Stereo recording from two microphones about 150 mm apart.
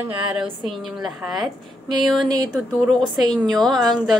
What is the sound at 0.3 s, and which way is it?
A woman's voice, centre (ahead or behind).